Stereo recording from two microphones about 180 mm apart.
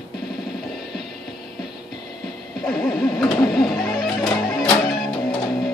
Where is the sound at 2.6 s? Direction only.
Centre (ahead or behind).